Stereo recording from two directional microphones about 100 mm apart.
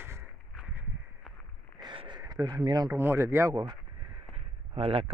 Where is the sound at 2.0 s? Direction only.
45° right (ahead or behind).